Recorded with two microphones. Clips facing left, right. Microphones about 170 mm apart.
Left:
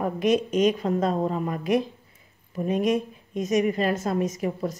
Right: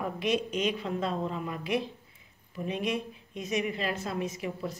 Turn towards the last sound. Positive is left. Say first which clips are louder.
# left 7 dB
turn(degrees=45)  # may be behind; listen again after turning